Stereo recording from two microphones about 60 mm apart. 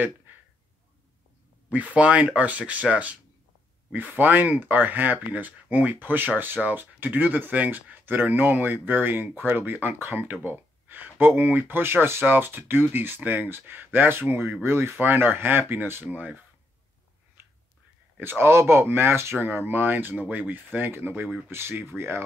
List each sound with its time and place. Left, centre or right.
1.7 s speech: right
18.2 s speech: right